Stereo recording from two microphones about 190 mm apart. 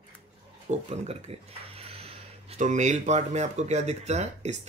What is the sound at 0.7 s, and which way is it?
Speech, 35° right (ahead or behind).